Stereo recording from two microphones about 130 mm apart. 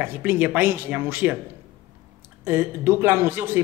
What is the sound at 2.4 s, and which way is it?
A woman's voice, 20° right (ahead or behind).